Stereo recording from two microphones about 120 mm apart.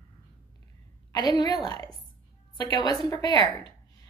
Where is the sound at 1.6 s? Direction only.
35° left (ahead or behind).